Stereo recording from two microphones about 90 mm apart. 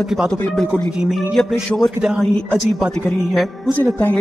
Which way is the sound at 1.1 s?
Centre (ahead or behind).